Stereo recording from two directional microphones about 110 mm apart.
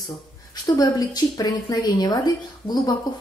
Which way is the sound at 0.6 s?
35° left (ahead or behind).